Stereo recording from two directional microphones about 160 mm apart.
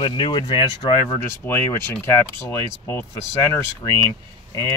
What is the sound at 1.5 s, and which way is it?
Speech, 15° left (ahead or behind).